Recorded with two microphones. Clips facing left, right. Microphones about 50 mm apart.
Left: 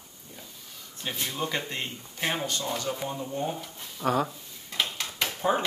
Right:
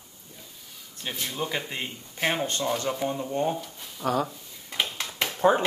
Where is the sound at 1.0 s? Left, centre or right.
Centre.